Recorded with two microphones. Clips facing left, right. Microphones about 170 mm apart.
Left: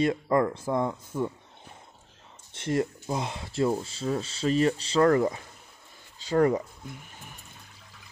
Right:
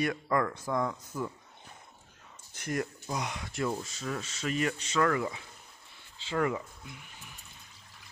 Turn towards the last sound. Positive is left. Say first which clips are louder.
# left 5 dB
turn(degrees=40)  # may be behind; listen again after turning